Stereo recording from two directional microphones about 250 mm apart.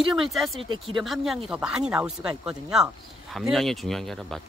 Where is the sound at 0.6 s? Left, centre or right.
Right.